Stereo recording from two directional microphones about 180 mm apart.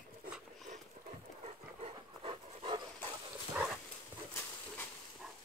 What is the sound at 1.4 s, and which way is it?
Dog, 35° right (ahead or behind).